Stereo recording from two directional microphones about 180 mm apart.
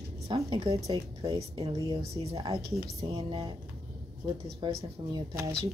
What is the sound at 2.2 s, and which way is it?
Speech, 35° right (ahead or behind).